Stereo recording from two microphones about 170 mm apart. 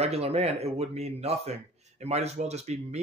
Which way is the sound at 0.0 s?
35° right (ahead or behind).